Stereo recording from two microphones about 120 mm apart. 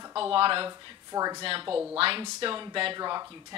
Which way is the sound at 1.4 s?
50° right (ahead or behind).